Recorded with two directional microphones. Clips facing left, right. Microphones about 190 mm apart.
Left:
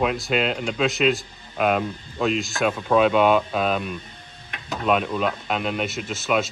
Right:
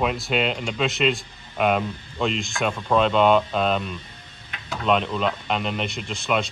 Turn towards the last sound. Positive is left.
turn(degrees=5)  # may be behind; listen again after turning